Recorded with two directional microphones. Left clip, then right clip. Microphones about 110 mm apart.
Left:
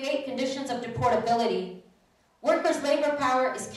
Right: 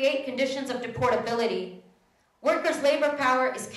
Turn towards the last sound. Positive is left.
turn(degrees=-15)  # may be behind; listen again after turning